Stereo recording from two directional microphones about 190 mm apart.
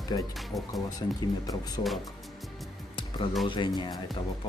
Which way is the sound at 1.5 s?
20° left (ahead or behind).